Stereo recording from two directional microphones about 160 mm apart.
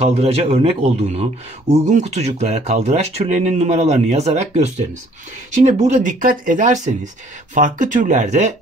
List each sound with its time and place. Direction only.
0.0 s a man's voice: 40° right (ahead or behind)